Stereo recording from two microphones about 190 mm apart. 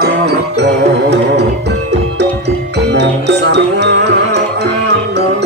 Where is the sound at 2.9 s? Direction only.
65° right (ahead or behind).